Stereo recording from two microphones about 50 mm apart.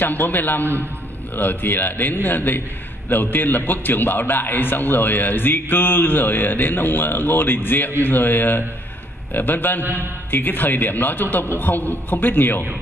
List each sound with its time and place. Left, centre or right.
0.0 s a man's voice: left